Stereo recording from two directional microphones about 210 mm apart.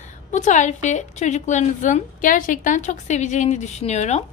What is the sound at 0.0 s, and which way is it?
A woman's voice, 35° left (ahead or behind).